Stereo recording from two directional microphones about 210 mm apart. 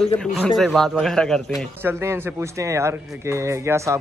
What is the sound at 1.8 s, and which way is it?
Speech, 10° right (ahead or behind).